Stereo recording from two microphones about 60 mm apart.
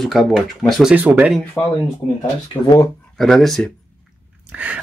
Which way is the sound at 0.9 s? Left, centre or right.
Right.